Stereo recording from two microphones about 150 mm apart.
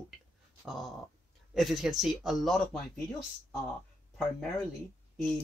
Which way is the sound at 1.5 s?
Centre (ahead or behind).